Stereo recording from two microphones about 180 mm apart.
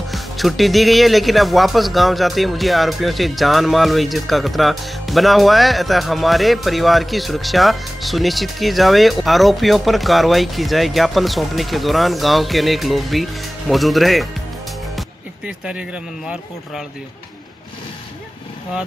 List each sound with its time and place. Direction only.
0.1 s speech: centre (ahead or behind)